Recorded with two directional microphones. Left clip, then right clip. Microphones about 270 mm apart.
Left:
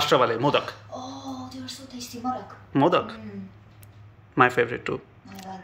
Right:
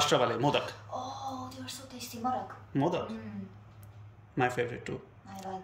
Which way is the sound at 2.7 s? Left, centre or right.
Centre.